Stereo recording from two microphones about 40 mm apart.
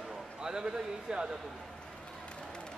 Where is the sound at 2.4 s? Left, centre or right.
Left.